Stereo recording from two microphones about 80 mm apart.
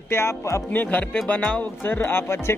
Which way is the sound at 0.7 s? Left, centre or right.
Left.